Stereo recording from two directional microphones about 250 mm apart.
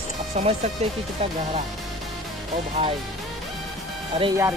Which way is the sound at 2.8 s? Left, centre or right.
Right.